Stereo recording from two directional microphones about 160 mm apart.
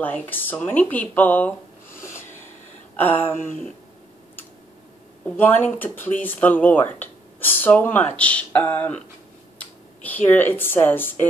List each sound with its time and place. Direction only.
0.0 s speech: 10° left (ahead or behind)
2.0 s snort: 15° left (ahead or behind)
3.0 s speech: 10° left (ahead or behind)
5.4 s speech: 10° left (ahead or behind)